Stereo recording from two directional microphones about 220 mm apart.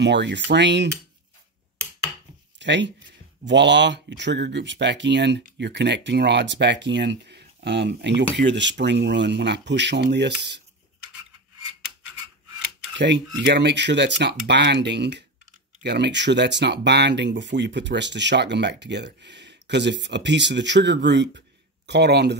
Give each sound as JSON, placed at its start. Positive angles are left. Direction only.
{"t": 0.0, "sound": "speech", "side_deg": -50}
{"t": 2.6, "sound": "speech", "side_deg": -55}
{"t": 12.9, "sound": "speech", "side_deg": -55}